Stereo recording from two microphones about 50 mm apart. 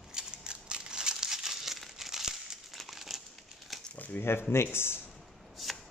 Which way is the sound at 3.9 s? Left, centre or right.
Left.